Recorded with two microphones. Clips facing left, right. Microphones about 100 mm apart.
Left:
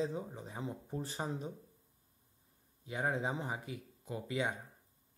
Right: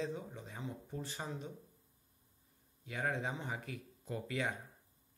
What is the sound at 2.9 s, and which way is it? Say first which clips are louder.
Speech: left 3 dB; 25° left (ahead or behind).